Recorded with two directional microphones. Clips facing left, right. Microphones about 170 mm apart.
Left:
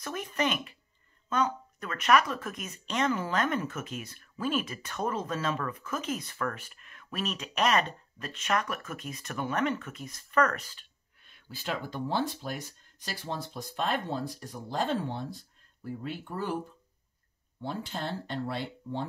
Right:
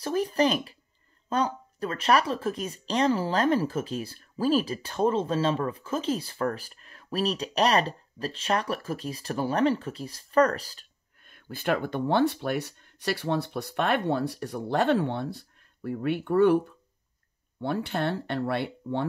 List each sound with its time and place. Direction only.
0.0 s speech: 35° right (ahead or behind); by 19.0 s 65° right (ahead or behind)